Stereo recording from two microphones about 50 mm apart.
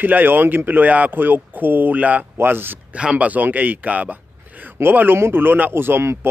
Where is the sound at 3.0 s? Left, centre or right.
Right.